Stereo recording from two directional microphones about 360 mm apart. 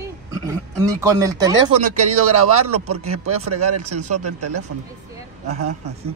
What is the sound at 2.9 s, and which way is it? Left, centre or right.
Speech, right.